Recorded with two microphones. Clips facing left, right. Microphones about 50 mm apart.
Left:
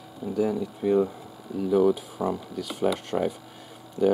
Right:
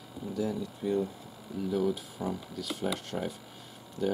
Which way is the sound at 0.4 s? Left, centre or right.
Centre.